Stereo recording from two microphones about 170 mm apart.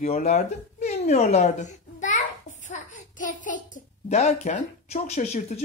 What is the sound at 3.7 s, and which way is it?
Speech, 40° left (ahead or behind).